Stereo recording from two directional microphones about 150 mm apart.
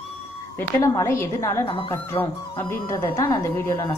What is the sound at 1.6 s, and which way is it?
Speech, 35° left (ahead or behind).